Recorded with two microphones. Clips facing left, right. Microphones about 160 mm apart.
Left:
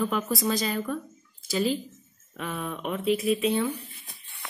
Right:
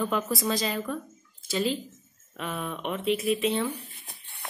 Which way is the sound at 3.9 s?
60° right (ahead or behind).